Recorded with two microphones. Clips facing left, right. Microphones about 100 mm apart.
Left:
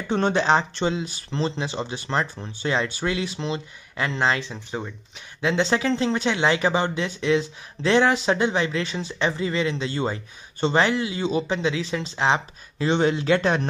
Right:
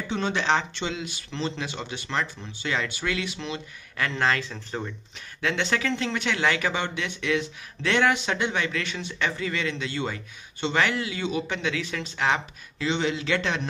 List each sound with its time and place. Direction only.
0.1 s speech: 40° left (ahead or behind)
12.8 s speech: 45° left (ahead or behind)